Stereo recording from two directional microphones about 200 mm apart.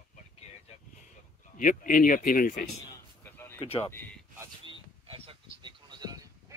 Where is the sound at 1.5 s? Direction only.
40° left (ahead or behind).